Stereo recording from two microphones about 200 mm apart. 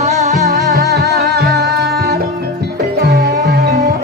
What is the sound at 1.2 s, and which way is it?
Music, 50° right (ahead or behind).